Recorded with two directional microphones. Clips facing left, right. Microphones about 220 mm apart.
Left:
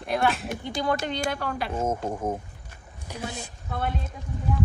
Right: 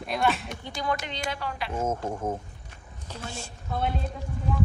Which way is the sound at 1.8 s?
10° left (ahead or behind).